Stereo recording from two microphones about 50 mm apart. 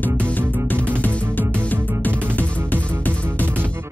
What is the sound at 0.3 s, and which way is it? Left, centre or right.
Music, left.